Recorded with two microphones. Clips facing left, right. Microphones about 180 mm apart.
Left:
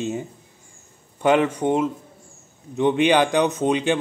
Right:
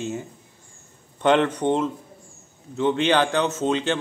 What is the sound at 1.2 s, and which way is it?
A man's voice, 10° left (ahead or behind).